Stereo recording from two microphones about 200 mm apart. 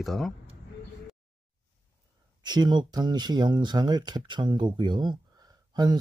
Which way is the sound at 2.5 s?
20° right (ahead or behind).